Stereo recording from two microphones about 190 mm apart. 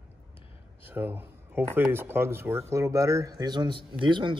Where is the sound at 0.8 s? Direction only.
10° right (ahead or behind).